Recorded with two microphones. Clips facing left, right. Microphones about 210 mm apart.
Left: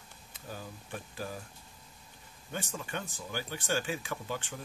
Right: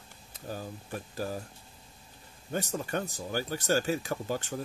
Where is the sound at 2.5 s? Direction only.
40° right (ahead or behind).